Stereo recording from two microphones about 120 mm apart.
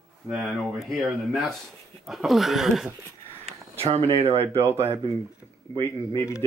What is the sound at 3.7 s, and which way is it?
Speech, 55° right (ahead or behind).